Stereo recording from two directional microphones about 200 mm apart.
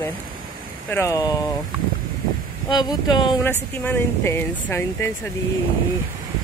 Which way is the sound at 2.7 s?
20° left (ahead or behind).